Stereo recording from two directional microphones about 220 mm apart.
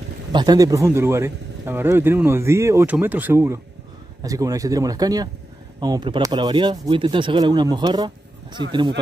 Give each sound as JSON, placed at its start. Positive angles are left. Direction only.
{"t": 0.3, "sound": "speech", "side_deg": -20}